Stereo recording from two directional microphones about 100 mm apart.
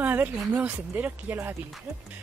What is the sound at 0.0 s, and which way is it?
A woman's voice, 20° right (ahead or behind).